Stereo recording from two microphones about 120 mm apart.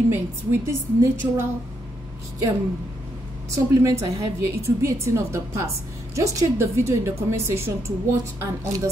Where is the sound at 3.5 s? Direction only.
25° right (ahead or behind).